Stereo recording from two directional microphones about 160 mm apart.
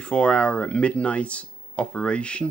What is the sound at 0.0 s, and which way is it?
Speech, 5° left (ahead or behind).